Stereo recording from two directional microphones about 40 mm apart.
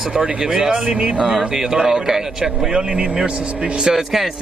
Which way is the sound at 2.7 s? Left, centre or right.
Right.